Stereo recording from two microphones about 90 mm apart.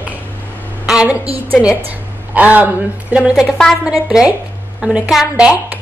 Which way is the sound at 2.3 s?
15° right (ahead or behind).